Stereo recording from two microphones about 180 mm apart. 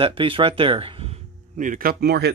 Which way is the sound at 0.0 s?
30° right (ahead or behind).